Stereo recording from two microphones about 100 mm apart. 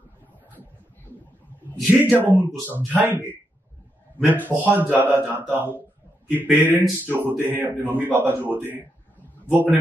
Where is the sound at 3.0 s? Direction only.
25° right (ahead or behind).